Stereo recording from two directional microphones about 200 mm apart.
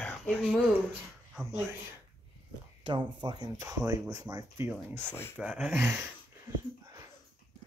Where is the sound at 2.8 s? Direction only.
20° right (ahead or behind).